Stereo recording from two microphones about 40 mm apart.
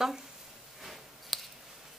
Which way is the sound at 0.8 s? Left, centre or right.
Centre.